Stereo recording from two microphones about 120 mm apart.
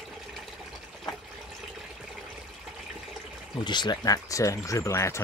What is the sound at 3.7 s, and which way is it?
Speech, 40° left (ahead or behind).